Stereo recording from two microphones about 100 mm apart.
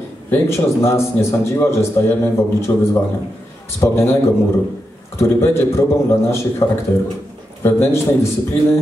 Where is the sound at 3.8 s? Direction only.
35° left (ahead or behind).